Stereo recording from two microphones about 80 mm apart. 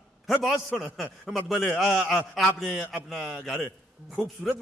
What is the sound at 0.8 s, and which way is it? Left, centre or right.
Speech, centre.